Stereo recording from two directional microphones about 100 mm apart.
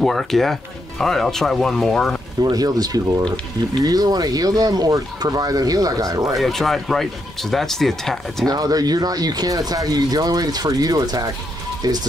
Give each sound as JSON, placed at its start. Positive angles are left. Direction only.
{"t": 0.0, "sound": "speech", "side_deg": 0}
{"t": 2.4, "sound": "speech", "side_deg": -40}
{"t": 6.3, "sound": "speech", "side_deg": 0}
{"t": 8.5, "sound": "speech", "side_deg": -40}